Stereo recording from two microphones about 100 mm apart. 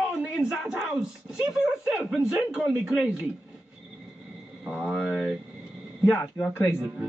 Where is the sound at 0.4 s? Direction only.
10° right (ahead or behind).